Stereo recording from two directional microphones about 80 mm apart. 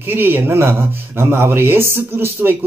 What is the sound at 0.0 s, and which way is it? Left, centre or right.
Speech, right.